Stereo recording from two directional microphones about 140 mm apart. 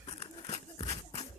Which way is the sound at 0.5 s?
50° left (ahead or behind).